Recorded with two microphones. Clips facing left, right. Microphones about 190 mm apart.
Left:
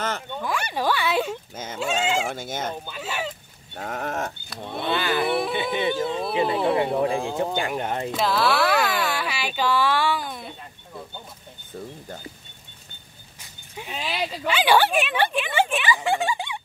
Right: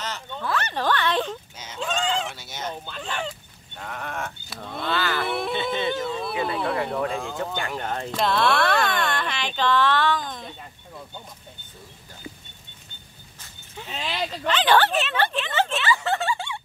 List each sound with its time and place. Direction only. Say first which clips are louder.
0.3 s speech: even; 10° left (ahead or behind)
2.2 s livestock: left 5 dB; 50° left (ahead or behind)
2.9 s speech: left 1 dB; 5° left (ahead or behind)
3.7 s livestock: left 5 dB; 45° left (ahead or behind)
4.6 s speech: left 1 dB; 20° left (ahead or behind)
8.1 s speech: right 1 dB; 5° left (ahead or behind)
13.4 s horse: left 2 dB; 15° left (ahead or behind)